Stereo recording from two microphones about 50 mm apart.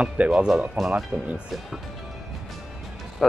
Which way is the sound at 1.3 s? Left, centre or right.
Right.